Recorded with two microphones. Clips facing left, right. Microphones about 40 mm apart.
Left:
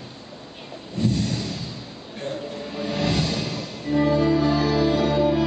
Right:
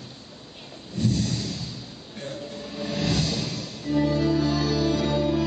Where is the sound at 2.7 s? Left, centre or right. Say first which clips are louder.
Left 2 dB; centre.